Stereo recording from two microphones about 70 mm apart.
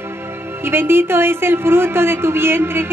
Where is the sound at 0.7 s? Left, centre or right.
Right.